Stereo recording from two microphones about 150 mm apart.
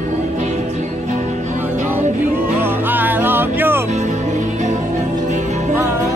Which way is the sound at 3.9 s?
50° right (ahead or behind).